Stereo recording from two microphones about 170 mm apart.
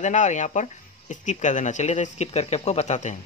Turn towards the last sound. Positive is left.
turn(degrees=45)  # may be behind; listen again after turning